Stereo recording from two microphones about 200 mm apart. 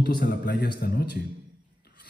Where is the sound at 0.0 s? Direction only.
45° left (ahead or behind).